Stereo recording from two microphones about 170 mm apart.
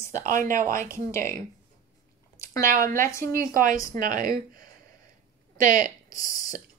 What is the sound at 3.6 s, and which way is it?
Speech, 55° right (ahead or behind).